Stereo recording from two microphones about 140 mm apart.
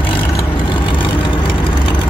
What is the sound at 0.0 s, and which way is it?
Vehicle, 35° left (ahead or behind).